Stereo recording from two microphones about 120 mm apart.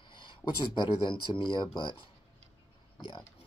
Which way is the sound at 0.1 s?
40° left (ahead or behind).